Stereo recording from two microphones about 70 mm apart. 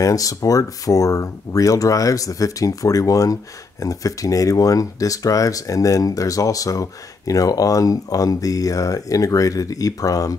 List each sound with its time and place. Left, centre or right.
0.0 s speech: left